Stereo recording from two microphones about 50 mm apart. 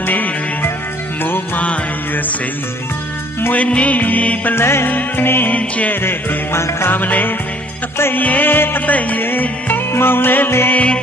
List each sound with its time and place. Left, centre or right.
0.0 s music: left
3.5 s music: left
4.6 s music: left
4.8 s music: left
5.5 s music: left
5.9 s music: left
6.9 s music: left
8.9 s music: left
10.7 s music: left